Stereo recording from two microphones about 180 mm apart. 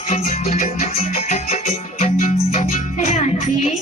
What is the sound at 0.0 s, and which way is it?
Music, 35° left (ahead or behind).